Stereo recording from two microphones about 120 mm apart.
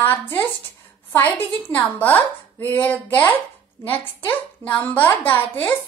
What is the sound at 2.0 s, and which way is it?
A woman's voice, 15° left (ahead or behind).